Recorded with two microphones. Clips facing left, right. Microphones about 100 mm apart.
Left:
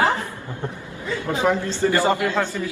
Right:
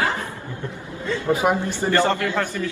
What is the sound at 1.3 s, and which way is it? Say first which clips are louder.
Speech: right 1 dB; 15° right (ahead or behind).